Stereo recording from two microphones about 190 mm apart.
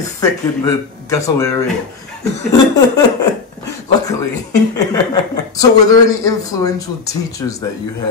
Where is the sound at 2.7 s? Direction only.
20° left (ahead or behind).